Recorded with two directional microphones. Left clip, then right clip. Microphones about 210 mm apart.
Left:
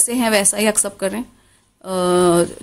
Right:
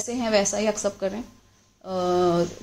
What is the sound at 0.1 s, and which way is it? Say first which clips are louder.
A woman's voice: left 4 dB; 35° left (ahead or behind).